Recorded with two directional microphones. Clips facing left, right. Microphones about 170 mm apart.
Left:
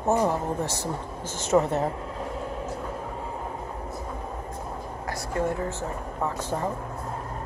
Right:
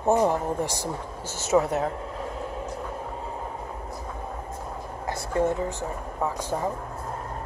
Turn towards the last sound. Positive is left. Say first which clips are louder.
# right 1 dB
turn(degrees=-10)  # may be behind; listen again after turning